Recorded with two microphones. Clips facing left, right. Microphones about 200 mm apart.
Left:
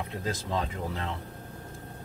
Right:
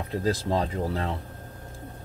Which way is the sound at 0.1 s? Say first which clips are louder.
Right 9 dB; 35° right (ahead or behind).